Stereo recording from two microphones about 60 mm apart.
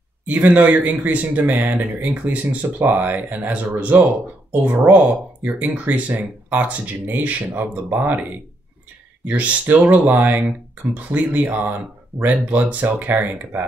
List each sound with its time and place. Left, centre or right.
0.3 s speech: right